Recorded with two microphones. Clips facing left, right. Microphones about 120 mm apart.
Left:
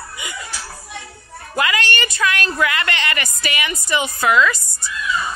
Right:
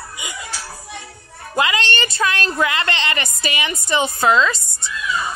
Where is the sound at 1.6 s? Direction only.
25° right (ahead or behind).